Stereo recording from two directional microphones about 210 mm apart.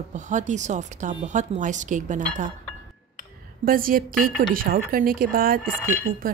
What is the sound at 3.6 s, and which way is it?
A woman's voice, 45° right (ahead or behind).